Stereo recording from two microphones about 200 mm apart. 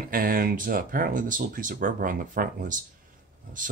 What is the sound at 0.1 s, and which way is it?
Speech, 45° right (ahead or behind).